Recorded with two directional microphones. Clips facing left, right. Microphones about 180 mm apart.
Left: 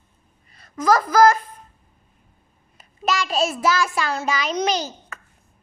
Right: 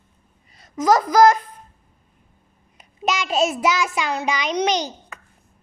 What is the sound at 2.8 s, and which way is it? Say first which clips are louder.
A child's voice: even; 20° right (ahead or behind).